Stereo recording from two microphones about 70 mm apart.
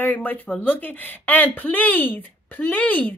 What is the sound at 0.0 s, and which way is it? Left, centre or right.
Speech, left.